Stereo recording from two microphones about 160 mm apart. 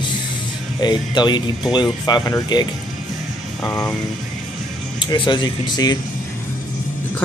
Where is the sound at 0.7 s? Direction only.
25° left (ahead or behind).